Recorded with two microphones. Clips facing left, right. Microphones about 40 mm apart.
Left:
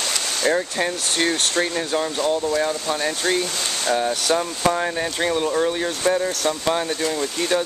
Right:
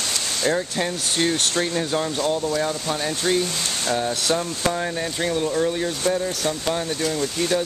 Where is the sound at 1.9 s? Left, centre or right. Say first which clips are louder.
Left 1 dB; centre.